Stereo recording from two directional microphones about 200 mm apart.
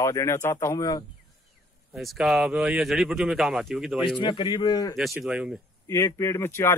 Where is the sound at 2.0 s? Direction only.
Centre (ahead or behind).